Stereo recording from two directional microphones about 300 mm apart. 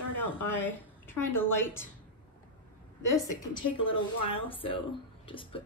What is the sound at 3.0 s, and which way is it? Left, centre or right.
Speech, left.